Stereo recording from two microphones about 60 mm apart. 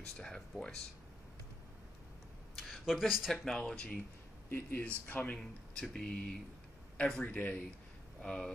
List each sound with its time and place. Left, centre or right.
0.0 s speech: centre
2.5 s a sound: centre
3.3 s speech: centre
4.5 s speech: left
5.3 s speech: centre
8.2 s speech: centre